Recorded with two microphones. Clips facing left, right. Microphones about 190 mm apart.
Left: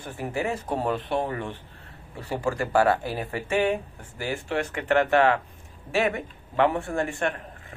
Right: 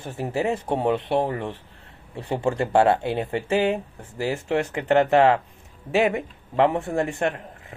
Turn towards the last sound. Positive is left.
turn(degrees=-25)  # may be behind; listen again after turning